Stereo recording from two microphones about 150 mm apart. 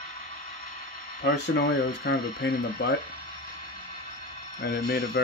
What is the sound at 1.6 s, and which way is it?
Speech, 90° left.